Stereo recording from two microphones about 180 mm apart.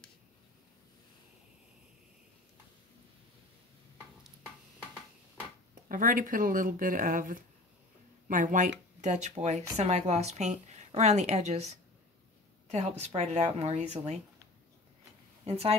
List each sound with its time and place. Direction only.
5.9 s a woman's voice: 50° right (ahead or behind)
15.4 s speech: 35° right (ahead or behind)